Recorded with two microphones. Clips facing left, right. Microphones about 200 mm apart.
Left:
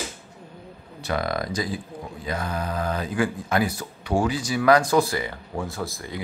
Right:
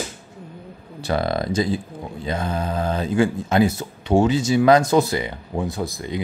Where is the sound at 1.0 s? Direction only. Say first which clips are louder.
Right 4 dB; 30° right (ahead or behind).